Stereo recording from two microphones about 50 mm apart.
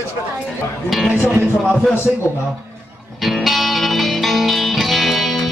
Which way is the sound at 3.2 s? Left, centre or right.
Centre.